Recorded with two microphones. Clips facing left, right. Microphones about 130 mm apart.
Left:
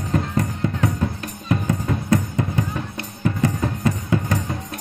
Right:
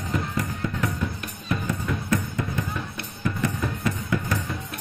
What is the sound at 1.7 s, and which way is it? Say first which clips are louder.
Music: left 5 dB; 30° left (ahead or behind).